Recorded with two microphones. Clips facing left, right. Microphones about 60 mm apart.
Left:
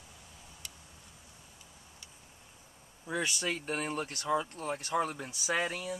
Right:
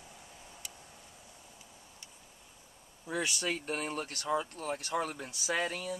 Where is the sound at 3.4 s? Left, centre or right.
Centre.